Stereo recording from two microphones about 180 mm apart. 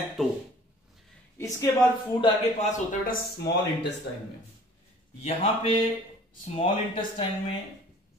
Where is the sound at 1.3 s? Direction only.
20° left (ahead or behind).